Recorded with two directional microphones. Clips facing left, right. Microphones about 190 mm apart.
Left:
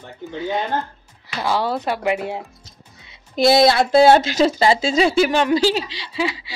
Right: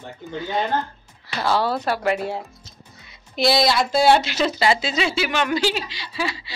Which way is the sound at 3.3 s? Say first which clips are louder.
Left 5 dB; 50° left (ahead or behind).